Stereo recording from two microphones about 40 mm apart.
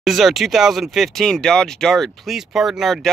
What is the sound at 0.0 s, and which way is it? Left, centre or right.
Speech, centre.